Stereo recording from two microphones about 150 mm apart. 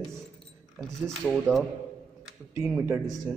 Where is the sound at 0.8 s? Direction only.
Centre (ahead or behind).